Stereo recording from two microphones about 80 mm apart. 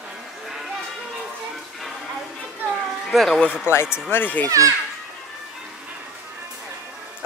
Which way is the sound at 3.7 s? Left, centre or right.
Left.